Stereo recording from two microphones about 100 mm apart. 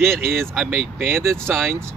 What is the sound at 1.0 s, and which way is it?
Speech, 25° right (ahead or behind).